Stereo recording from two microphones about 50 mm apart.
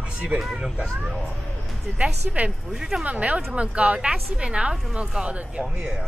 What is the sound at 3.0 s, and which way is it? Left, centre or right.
Speech, right.